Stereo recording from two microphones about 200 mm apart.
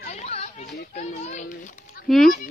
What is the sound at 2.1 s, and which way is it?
Dog, centre (ahead or behind).